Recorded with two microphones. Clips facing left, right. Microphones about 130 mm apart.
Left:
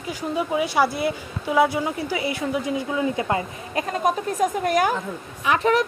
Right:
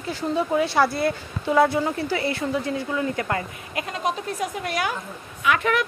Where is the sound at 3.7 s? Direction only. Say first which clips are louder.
Left 4 dB; 40° left (ahead or behind).